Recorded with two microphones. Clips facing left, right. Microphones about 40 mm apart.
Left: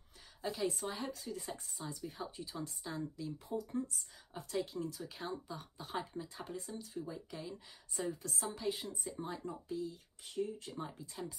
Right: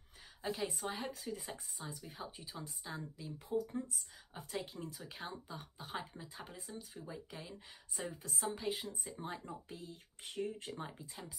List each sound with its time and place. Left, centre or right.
0.4 s speech: centre
9.7 s speech: right
10.7 s speech: right